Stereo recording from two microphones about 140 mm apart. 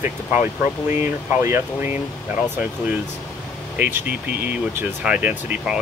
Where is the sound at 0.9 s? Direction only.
20° right (ahead or behind).